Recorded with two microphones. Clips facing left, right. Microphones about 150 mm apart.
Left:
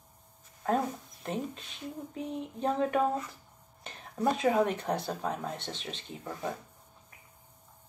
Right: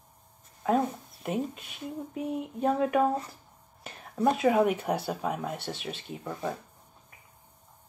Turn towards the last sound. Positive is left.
turn(degrees=-5)  # may be behind; listen again after turning